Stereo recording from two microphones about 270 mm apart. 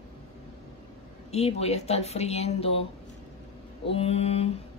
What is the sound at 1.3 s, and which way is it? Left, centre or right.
Speech, left.